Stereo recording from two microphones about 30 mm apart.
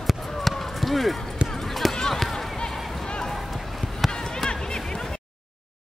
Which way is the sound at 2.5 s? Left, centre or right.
Left.